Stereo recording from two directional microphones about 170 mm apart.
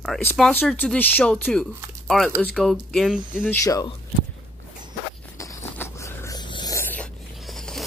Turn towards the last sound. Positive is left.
turn(degrees=0)  # may be behind; listen again after turning